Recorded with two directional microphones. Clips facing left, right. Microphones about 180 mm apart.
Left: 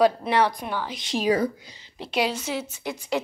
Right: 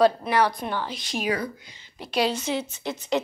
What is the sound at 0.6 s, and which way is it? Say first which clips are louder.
Speech: right 1 dB; 10° left (ahead or behind).